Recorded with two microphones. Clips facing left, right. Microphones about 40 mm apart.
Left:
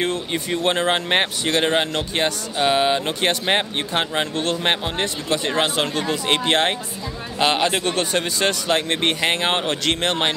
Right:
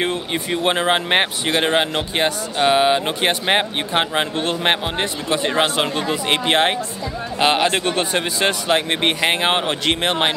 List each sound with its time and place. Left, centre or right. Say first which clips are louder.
0.0 s speech: right 1 dB; right